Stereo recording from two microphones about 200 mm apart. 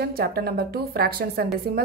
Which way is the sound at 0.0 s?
50° right (ahead or behind).